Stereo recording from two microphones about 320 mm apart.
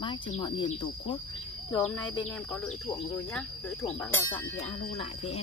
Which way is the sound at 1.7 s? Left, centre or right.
Centre.